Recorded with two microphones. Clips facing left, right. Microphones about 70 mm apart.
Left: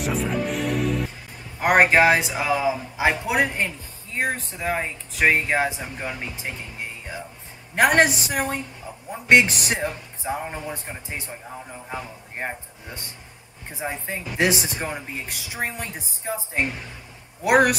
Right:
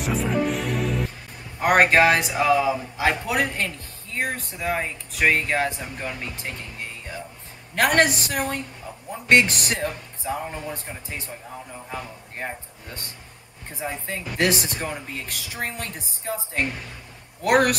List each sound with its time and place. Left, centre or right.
0.0 s music: centre
1.6 s speech: centre
12.4 s speech: centre
13.7 s speech: centre